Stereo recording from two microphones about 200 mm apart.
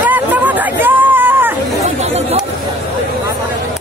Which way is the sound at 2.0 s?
35° right (ahead or behind).